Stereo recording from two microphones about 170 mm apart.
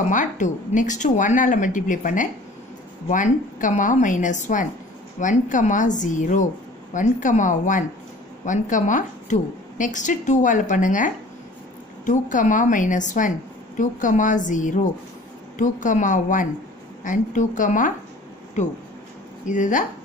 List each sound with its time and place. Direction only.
0.1 s a woman's voice: 50° left (ahead or behind)
12.1 s a woman's voice: 50° left (ahead or behind)